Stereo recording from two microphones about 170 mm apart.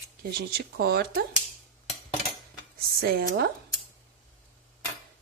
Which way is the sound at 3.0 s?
60° right (ahead or behind).